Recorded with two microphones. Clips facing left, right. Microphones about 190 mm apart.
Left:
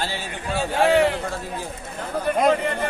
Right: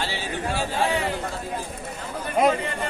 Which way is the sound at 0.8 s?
70° left (ahead or behind).